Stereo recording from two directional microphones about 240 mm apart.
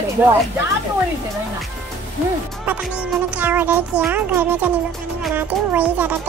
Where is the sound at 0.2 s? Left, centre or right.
Centre.